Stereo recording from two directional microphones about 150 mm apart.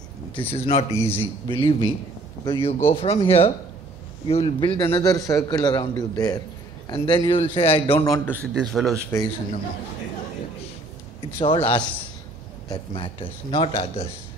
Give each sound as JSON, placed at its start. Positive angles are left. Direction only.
{"t": 0.3, "sound": "speech", "side_deg": 35}
{"t": 0.9, "sound": "a man's voice", "side_deg": 15}
{"t": 1.5, "sound": "speech", "side_deg": 35}
{"t": 4.8, "sound": "a man's voice", "side_deg": 25}
{"t": 8.0, "sound": "a man's voice", "side_deg": 20}
{"t": 8.5, "sound": "speech", "side_deg": 0}
{"t": 9.1, "sound": "a man's voice", "side_deg": 15}
{"t": 11.3, "sound": "speech", "side_deg": 35}